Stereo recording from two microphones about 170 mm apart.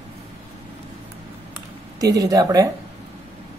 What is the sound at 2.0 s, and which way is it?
Speech, 20° right (ahead or behind).